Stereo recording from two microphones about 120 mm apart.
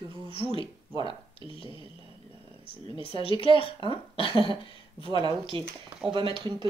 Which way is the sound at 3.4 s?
50° left (ahead or behind).